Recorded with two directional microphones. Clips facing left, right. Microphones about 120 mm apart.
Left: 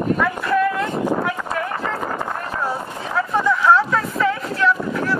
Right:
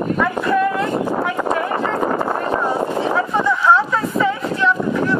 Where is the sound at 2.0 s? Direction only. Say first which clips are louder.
Right 6 dB; 40° right (ahead or behind).